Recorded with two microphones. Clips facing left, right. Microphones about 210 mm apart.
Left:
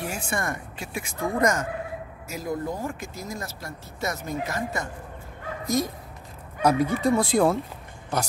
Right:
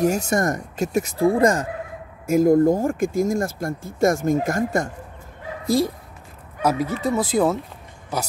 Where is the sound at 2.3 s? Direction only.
50° right (ahead or behind).